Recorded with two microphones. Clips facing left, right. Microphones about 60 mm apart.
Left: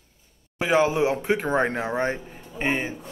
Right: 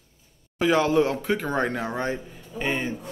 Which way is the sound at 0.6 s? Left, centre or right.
Left.